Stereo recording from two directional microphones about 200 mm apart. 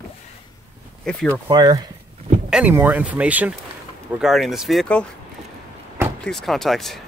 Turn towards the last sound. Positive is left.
turn(degrees=0)  # may be behind; listen again after turning